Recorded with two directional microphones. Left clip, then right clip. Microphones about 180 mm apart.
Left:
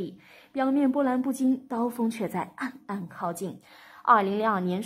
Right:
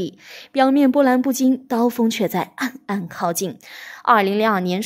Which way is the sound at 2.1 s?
45° right (ahead or behind).